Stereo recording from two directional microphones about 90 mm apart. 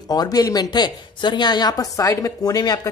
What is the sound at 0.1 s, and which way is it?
A woman's voice, 45° left (ahead or behind).